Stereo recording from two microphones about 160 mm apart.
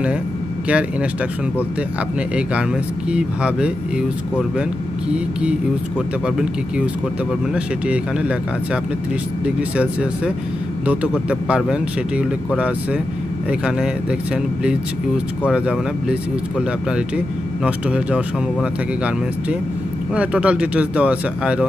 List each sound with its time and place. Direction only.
3.1 s speech: 5° right (ahead or behind)
5.1 s speech: 5° right (ahead or behind)
7.5 s speech: 5° right (ahead or behind)
9.6 s speech: 5° right (ahead or behind)
20.2 s speech: 5° right (ahead or behind)